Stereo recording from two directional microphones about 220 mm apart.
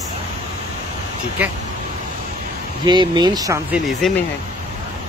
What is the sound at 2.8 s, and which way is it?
Speech, 20° right (ahead or behind).